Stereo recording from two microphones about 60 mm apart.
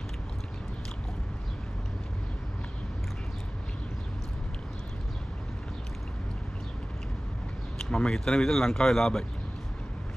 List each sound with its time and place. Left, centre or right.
7.8 s speech: centre